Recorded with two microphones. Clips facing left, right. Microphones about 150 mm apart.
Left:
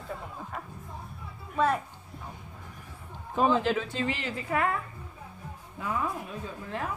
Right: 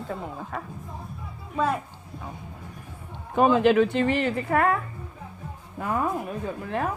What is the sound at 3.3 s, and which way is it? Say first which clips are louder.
A woman's voice: right 7 dB; 65° right (ahead or behind).